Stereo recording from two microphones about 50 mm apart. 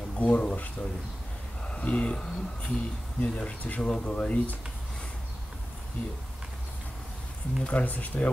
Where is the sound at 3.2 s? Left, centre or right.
Left.